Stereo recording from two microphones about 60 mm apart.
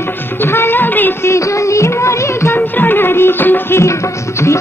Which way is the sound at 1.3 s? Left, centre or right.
Left.